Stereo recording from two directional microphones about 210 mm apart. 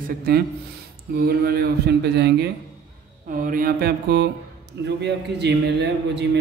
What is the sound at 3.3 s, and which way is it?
A man's voice, 40° right (ahead or behind).